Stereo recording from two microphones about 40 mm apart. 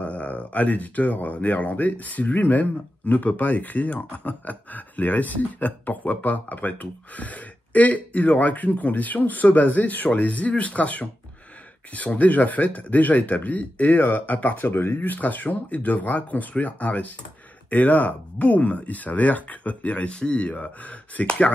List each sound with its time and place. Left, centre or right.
0.0 s speech: left
12.2 s speech: left
14.7 s speech: left
15.0 s speech: left